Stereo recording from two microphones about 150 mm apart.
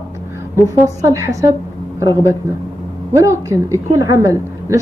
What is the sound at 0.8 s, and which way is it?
Speech, 20° right (ahead or behind).